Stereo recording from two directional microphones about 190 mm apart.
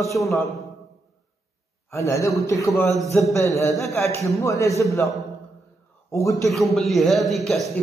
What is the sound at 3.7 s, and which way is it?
Speech, centre (ahead or behind).